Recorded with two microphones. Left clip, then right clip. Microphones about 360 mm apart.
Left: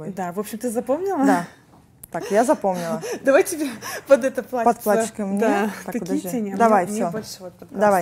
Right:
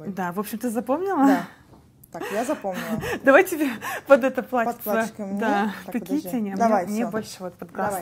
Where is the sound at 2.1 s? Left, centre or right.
Left.